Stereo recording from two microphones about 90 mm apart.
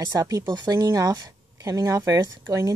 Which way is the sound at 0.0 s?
40° right (ahead or behind).